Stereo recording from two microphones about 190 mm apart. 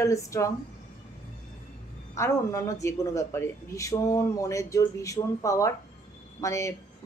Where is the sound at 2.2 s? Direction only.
15° left (ahead or behind).